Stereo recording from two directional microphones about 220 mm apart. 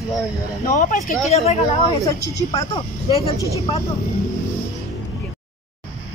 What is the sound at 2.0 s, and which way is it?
Speech, 15° left (ahead or behind).